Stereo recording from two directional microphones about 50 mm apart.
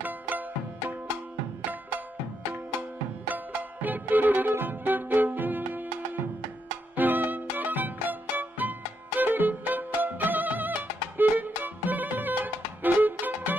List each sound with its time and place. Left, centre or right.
0.0 s music: right
3.3 s music: right
7.0 s music: right